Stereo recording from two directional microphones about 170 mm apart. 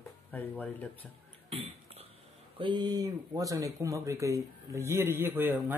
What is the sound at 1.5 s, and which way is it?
Cough, 35° right (ahead or behind).